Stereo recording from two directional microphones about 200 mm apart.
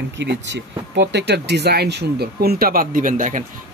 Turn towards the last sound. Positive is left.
turn(degrees=-40)  # may be behind; listen again after turning